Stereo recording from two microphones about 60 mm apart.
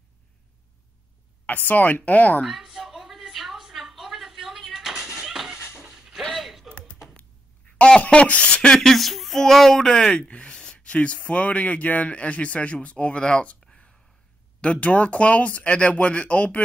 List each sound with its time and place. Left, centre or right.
1.4 s speech: left
2.4 s a sound: centre
5.2 s music: centre
5.9 s a sound: centre
6.3 s creak: centre
8.0 s speech: left; by 9.8 s centre
9.8 s speech: centre